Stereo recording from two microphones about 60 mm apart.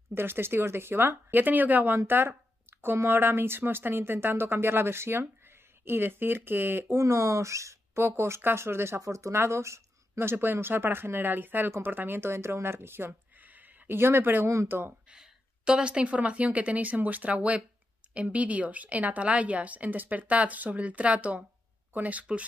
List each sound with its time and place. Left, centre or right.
0.1 s speech: right
7.0 s speech: right
8.0 s speech: right
9.0 s speech: right
10.3 s speech: right
13.9 s speech: right
15.0 s a woman's voice: centre